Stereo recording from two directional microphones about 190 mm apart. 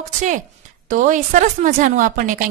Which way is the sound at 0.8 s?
45° right (ahead or behind).